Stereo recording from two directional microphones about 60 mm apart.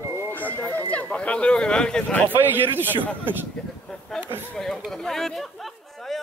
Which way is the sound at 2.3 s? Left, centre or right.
Right.